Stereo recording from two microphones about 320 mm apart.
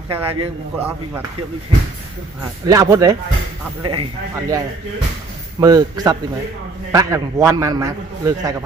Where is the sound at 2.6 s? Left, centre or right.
Centre.